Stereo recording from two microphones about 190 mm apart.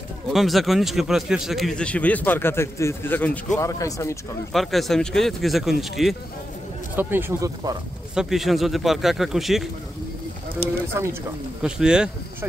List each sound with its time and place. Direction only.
0.3 s a man's voice: centre (ahead or behind); by 4.2 s 15° left (ahead or behind)
4.5 s a man's voice: centre (ahead or behind); by 7.7 s 15° right (ahead or behind)
8.1 s a man's voice: 5° right (ahead or behind)
11.6 s a man's voice: 5° right (ahead or behind)